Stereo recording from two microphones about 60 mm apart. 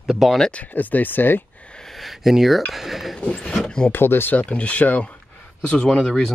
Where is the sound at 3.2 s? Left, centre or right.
Centre.